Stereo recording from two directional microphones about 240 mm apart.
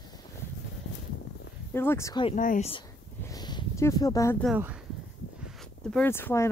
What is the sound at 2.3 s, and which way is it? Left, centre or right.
Speech, left.